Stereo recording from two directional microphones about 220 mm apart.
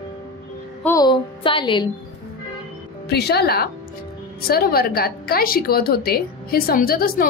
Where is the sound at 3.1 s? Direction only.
45° left (ahead or behind).